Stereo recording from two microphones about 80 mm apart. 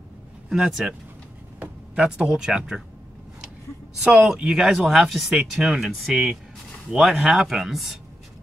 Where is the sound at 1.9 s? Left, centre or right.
Centre.